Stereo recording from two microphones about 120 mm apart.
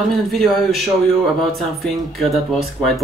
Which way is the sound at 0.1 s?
Centre (ahead or behind).